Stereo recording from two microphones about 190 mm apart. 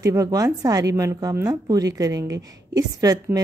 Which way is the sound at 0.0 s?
15° right (ahead or behind).